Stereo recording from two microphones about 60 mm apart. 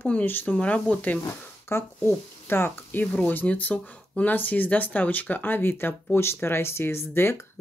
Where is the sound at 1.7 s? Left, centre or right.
Left.